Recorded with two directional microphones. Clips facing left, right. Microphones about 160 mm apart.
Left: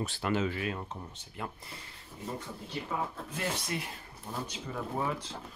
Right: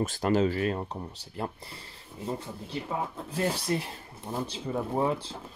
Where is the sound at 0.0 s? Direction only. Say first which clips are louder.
Right 6 dB; 40° right (ahead or behind).